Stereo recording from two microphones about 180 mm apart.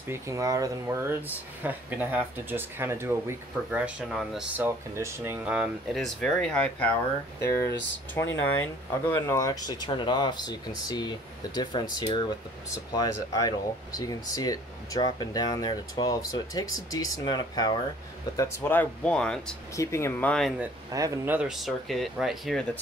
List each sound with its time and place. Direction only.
0.1 s speech: 15° right (ahead or behind); by 6.9 s 5° left (ahead or behind)
8.1 s speech: 10° left (ahead or behind)
19.7 s speech: 15° left (ahead or behind)
20.9 s speech: 20° right (ahead or behind)
21.4 s speech: centre (ahead or behind)